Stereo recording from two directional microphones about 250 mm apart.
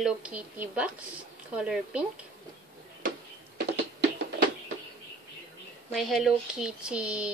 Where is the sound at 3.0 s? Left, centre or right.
Right.